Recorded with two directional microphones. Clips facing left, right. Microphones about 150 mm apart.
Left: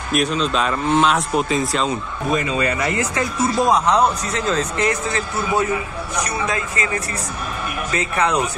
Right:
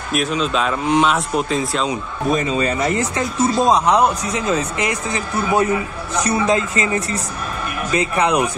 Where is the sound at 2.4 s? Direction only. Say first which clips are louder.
Right 2 dB; 30° right (ahead or behind).